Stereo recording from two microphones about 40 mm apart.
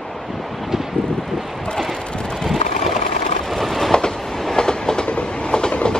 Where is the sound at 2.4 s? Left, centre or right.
Centre.